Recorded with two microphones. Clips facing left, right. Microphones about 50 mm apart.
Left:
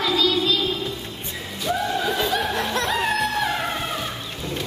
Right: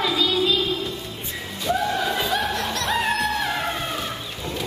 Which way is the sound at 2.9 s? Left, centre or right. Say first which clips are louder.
Right 3 dB; centre.